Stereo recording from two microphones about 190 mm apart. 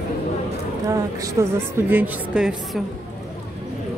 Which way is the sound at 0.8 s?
15° right (ahead or behind).